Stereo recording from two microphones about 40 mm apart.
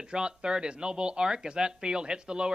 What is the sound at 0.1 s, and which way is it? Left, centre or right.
Speech, right.